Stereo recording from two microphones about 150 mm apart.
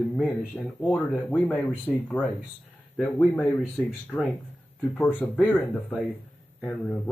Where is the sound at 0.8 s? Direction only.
10° left (ahead or behind).